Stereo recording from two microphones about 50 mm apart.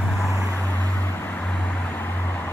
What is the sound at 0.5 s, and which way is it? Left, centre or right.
Vehicle, left.